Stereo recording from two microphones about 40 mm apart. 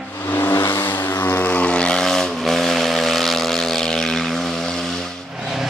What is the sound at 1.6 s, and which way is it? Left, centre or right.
Vehicle, left.